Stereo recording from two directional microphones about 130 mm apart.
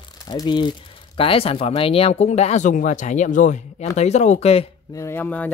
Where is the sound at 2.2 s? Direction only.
60° left (ahead or behind).